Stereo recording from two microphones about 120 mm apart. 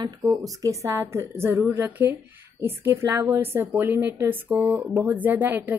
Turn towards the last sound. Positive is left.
turn(degrees=-15)  # may be behind; listen again after turning